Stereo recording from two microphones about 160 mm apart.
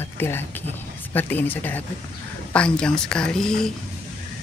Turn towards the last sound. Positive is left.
turn(degrees=5)  # may be behind; listen again after turning